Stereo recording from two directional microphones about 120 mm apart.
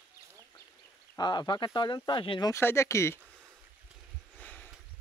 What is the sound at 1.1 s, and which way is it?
Speech, 35° left (ahead or behind).